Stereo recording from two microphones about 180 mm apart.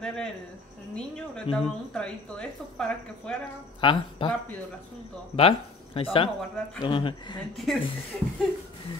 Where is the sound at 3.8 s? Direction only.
30° left (ahead or behind).